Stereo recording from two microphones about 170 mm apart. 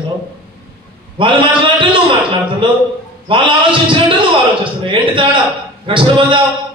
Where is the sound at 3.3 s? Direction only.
30° right (ahead or behind).